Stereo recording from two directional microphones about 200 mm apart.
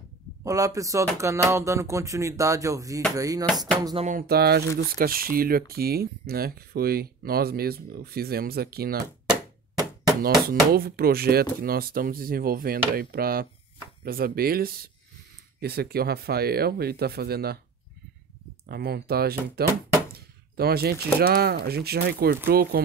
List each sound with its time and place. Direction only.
0.4 s speech: 15° right (ahead or behind)
4.0 s speech: 45° right (ahead or behind)
10.2 s speech: 50° right (ahead or behind)
18.7 s speech: 50° right (ahead or behind)